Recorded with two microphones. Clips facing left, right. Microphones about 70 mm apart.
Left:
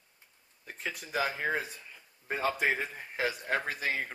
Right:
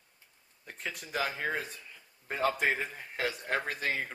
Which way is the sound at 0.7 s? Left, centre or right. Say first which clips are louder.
Left 1 dB; centre.